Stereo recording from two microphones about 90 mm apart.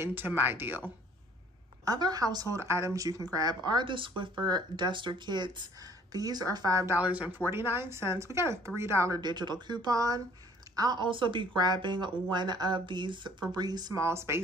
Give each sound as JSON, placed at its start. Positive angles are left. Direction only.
{"t": 0.0, "sound": "speech", "side_deg": -20}
{"t": 1.9, "sound": "a woman's voice", "side_deg": -45}
{"t": 7.0, "sound": "speech", "side_deg": -15}
{"t": 9.2, "sound": "a woman's voice", "side_deg": -55}
{"t": 13.9, "sound": "speech", "side_deg": -30}